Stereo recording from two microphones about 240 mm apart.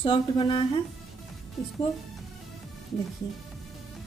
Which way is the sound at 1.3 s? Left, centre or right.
Centre.